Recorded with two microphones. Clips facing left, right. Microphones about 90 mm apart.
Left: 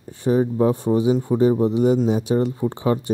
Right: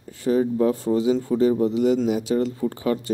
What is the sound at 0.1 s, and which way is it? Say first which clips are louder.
Speech: left 1 dB; 25° left (ahead or behind).